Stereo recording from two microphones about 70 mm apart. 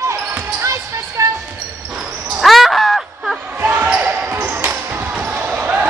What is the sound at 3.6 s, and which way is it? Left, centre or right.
Basketball bounce, right.